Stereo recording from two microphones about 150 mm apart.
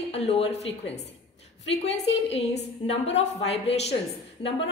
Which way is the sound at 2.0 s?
45° left (ahead or behind).